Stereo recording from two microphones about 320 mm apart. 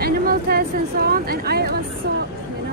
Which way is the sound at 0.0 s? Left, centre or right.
Right.